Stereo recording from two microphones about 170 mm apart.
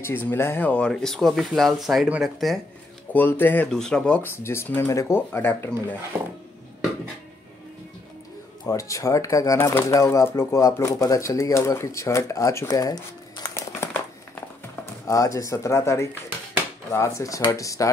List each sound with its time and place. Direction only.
0.0 s speech: 10° left (ahead or behind)
3.1 s speech: 10° left (ahead or behind)
8.6 s speech: 20° left (ahead or behind)
15.0 s speech: 20° left (ahead or behind)